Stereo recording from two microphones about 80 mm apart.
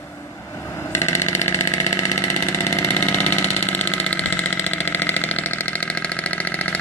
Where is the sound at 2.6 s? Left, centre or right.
Left.